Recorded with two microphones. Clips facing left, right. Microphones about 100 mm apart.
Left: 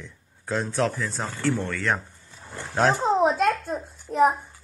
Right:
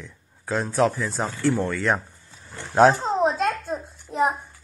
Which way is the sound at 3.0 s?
Centre (ahead or behind).